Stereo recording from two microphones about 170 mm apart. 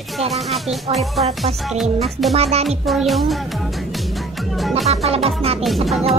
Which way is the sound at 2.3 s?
40° right (ahead or behind).